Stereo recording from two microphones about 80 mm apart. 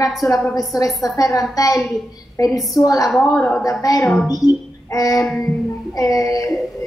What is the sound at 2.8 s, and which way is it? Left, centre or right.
Child singing, left.